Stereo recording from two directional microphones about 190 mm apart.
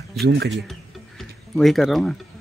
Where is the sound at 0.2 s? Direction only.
60° right (ahead or behind).